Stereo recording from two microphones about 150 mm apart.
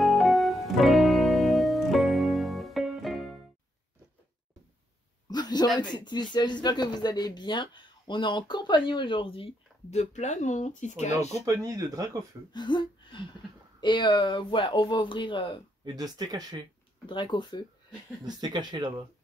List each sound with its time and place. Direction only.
0.0 s music: centre (ahead or behind)
5.3 s a sound: 25° left (ahead or behind)
5.8 s speech: 30° left (ahead or behind); by 11.4 s 50° left (ahead or behind)
11.4 s speech: 20° right (ahead or behind)
12.5 s a sound: 30° left (ahead or behind)
13.7 s speech: 30° left (ahead or behind)
15.8 s speech: 25° right (ahead or behind)
17.0 s speech: 30° left (ahead or behind)
18.2 s speech: 30° right (ahead or behind)